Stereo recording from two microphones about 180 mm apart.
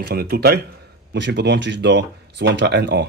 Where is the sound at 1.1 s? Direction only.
75° right (ahead or behind).